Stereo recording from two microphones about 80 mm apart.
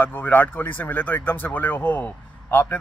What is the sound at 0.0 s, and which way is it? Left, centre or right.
Speech, left.